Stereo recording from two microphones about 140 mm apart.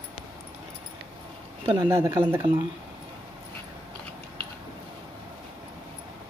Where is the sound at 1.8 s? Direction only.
15° right (ahead or behind).